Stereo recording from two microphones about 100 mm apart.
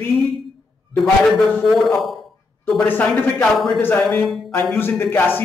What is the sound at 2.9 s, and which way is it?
Speech, 15° left (ahead or behind).